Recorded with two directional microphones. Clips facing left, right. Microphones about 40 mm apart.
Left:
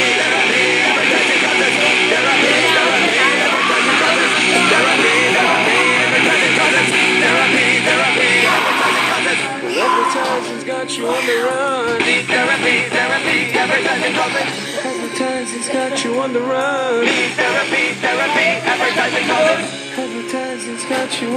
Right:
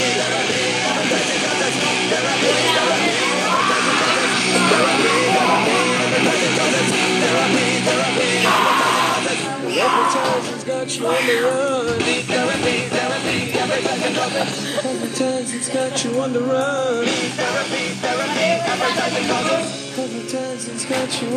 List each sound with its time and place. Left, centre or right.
0.0 s vehicle: left
8.6 s a sound: left
11.1 s music: centre
11.6 s music: left
16.5 s music: left